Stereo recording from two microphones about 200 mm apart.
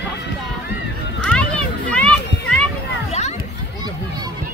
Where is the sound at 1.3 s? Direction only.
5° left (ahead or behind).